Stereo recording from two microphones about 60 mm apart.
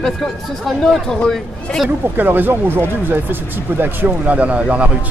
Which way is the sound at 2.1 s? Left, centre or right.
Right.